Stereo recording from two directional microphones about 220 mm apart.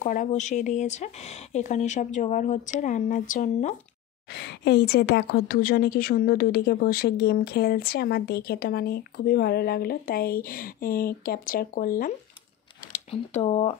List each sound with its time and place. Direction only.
0.0 s speech: 35° left (ahead or behind)
4.3 s a woman's voice: 50° left (ahead or behind)
12.9 s speech: 30° left (ahead or behind)